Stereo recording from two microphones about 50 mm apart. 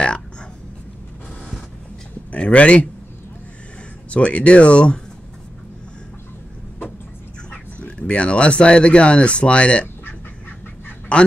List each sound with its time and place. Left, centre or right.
2.3 s speech: left
4.1 s speech: left
7.8 s speech: left
11.1 s a man's voice: left